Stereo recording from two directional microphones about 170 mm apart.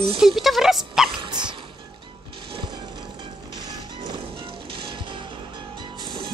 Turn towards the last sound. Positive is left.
turn(degrees=-25)  # may be behind; listen again after turning